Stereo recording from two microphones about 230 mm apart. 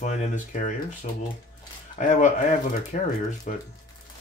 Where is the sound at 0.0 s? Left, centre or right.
Left.